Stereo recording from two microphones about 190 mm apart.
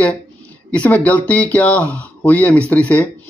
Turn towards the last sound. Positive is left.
turn(degrees=10)  # may be behind; listen again after turning